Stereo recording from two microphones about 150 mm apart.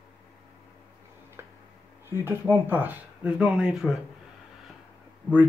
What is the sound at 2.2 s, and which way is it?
Speech, 15° right (ahead or behind).